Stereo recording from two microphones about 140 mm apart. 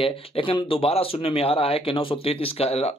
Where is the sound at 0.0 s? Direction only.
40° left (ahead or behind).